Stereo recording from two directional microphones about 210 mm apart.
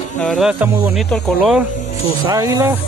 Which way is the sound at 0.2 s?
Centre (ahead or behind).